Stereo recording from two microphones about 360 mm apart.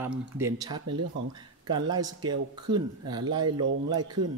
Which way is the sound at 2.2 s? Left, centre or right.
Right.